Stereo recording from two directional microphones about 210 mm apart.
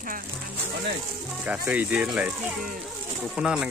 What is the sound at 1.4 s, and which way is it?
Speech, 5° right (ahead or behind).